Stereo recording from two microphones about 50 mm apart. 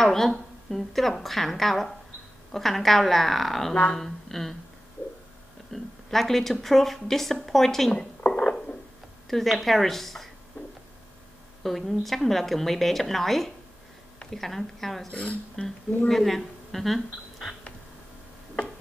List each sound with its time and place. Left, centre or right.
0.0 s a woman's voice: centre
5.7 s a woman's voice: centre
7.9 s a sound: centre
9.3 s a woman's voice: centre
11.6 s a woman's voice: centre
15.0 s speech: left
15.6 s a woman's voice: centre